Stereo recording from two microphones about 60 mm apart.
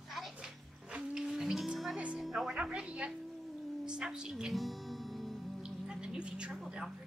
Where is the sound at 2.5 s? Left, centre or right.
Centre.